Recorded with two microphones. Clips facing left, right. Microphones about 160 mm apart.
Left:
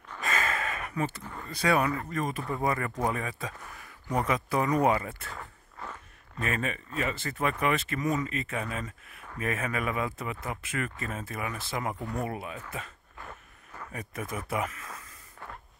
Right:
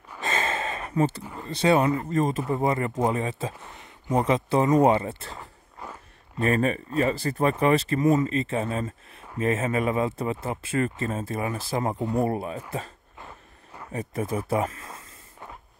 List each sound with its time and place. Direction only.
0.2 s gasp: 25° right (ahead or behind)
1.4 s speech: 25° right (ahead or behind)
6.4 s speech: 35° right (ahead or behind)
14.5 s a sound: 30° right (ahead or behind)